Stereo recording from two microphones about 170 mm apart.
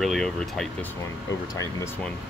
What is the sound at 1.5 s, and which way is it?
Speech, 20° left (ahead or behind).